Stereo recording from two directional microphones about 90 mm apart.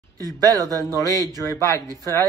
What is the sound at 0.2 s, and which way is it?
Speech, 45° right (ahead or behind).